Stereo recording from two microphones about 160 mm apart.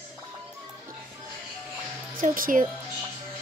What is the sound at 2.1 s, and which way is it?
Speech, 60° right (ahead or behind).